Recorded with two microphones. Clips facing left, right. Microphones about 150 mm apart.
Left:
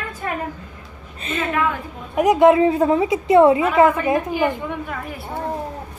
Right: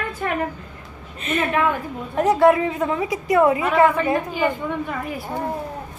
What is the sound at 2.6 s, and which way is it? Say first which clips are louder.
A woman's voice: left 6 dB; 30° left (ahead or behind).